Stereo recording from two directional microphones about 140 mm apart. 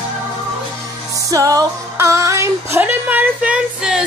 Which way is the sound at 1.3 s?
25° right (ahead or behind).